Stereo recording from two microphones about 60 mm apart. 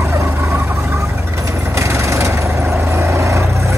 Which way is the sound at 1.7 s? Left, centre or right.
Right.